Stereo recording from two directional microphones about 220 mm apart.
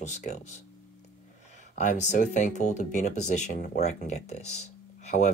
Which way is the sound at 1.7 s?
35° left (ahead or behind).